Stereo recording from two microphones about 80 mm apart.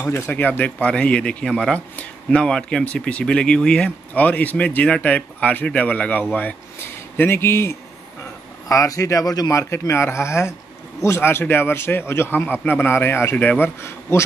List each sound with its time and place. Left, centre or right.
0.0 s speech: left
6.8 s speech: left
8.6 s speech: left
9.5 s a man's voice: left
13.7 s speech: left